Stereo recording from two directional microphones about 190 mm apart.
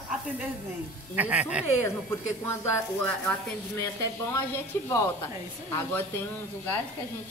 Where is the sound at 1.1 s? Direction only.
10° right (ahead or behind).